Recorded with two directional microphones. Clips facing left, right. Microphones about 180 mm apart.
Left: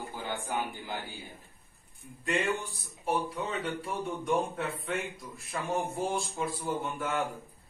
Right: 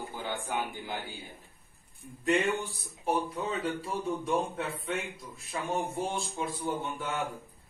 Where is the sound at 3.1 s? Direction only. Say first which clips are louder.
Right 1 dB; 15° right (ahead or behind).